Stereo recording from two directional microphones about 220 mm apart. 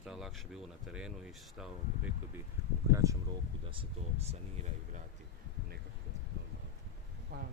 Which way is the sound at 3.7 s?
25° right (ahead or behind).